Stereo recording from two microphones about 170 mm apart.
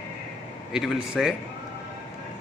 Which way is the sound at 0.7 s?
5° right (ahead or behind).